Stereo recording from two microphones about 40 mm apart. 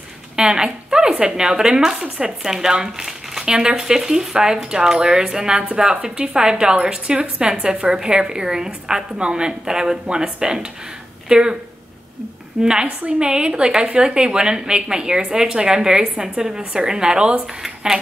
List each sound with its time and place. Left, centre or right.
0.4 s a woman's voice: centre
3.1 s crumpling: centre
3.4 s a woman's voice: centre
12.8 s a woman's voice: right